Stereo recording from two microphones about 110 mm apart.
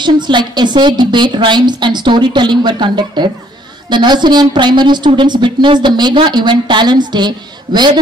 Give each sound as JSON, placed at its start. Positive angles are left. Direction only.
{"t": 0.0, "sound": "a woman's voice", "side_deg": -45}